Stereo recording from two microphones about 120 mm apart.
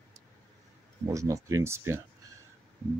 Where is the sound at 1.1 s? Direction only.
25° right (ahead or behind).